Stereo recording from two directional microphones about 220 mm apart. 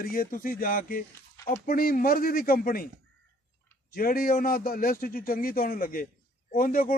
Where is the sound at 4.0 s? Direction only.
40° left (ahead or behind).